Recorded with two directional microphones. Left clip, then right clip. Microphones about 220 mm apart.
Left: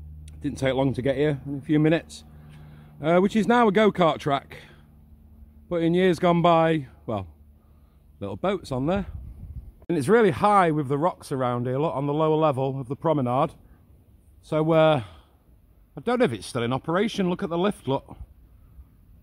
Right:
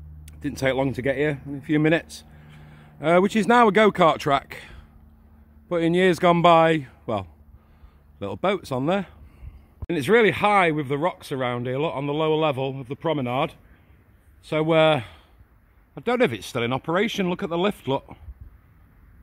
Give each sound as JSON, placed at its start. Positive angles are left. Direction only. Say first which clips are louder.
{"t": 0.2, "sound": "speech", "louder": "right 2 dB", "side_deg": 5}
{"t": 9.8, "sound": "speech", "louder": "right 1 dB", "side_deg": 10}